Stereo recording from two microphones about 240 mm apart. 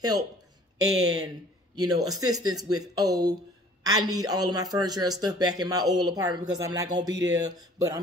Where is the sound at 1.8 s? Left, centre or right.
Centre.